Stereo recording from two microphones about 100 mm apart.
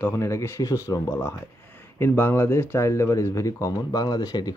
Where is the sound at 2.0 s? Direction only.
25° left (ahead or behind).